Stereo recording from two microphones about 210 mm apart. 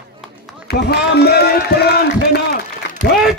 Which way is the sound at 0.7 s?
50° left (ahead or behind).